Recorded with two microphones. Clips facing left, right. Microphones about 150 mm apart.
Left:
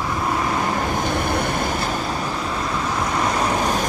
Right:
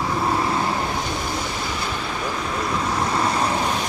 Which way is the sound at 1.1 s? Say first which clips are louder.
Left 5 dB; 60° left (ahead or behind).